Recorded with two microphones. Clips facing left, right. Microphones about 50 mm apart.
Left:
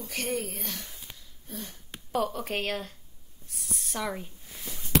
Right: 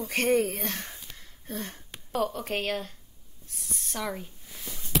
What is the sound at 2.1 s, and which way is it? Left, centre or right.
Speech, centre.